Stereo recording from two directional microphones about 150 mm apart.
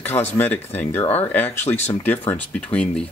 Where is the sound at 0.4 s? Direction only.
15° left (ahead or behind).